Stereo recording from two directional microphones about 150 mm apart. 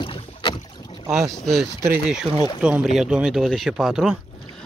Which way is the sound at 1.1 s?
Centre (ahead or behind).